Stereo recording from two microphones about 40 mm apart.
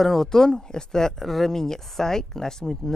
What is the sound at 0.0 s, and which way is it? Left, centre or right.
Speech, centre.